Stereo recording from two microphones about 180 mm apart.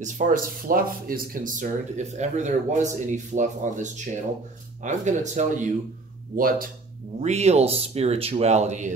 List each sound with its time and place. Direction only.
0.0 s speech: 45° right (ahead or behind)
6.3 s speech: 50° right (ahead or behind)
7.2 s a man's voice: 40° right (ahead or behind)